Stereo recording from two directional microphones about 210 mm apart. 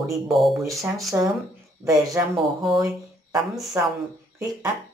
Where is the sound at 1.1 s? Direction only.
10° right (ahead or behind).